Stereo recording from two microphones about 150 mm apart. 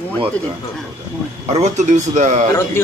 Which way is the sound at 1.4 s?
45° right (ahead or behind).